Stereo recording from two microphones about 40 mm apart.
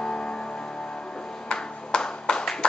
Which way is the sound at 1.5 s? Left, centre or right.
Left.